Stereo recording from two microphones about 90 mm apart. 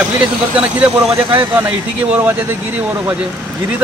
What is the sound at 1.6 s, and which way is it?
Speech, 15° right (ahead or behind).